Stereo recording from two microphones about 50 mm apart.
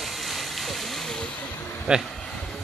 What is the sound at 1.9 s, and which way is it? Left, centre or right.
Speech, centre.